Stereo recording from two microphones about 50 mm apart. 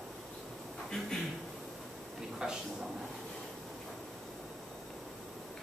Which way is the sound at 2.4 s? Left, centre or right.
Centre.